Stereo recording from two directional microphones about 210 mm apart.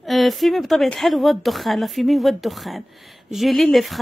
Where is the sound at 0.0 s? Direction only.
Centre (ahead or behind).